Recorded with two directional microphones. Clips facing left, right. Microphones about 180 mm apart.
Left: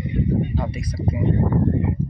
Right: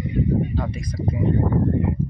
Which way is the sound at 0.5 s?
10° left (ahead or behind).